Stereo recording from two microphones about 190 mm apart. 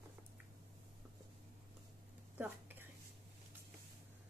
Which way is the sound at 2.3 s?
10° right (ahead or behind).